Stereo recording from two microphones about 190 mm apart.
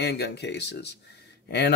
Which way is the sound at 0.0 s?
60° left (ahead or behind).